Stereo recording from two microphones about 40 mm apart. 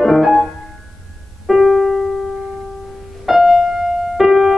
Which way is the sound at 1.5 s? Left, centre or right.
Centre.